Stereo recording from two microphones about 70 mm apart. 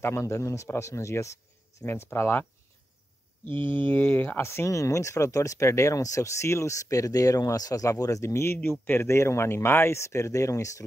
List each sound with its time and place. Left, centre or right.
0.0 s speech: left
3.6 s speech: left